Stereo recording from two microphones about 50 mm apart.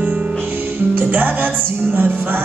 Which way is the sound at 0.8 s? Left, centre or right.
Right.